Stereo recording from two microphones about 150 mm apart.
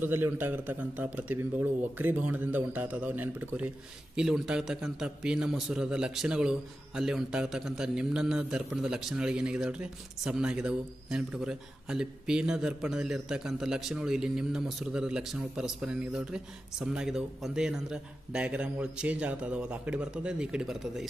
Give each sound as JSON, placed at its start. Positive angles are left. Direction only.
{"t": 0.0, "sound": "a man's voice", "side_deg": -15}